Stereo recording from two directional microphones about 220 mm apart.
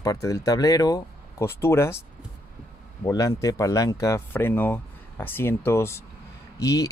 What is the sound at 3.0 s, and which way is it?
Speech, 15° left (ahead or behind).